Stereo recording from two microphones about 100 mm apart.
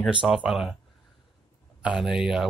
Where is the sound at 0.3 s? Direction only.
5° right (ahead or behind).